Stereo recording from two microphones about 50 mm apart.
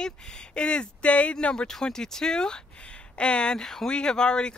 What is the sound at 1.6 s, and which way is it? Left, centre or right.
Speech, centre.